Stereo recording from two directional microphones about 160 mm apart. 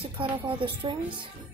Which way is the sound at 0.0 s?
35° right (ahead or behind).